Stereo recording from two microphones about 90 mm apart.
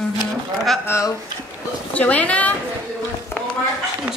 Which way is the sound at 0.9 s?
35° left (ahead or behind).